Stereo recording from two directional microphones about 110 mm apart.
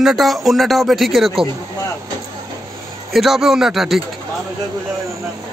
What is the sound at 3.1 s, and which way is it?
Speech, centre (ahead or behind).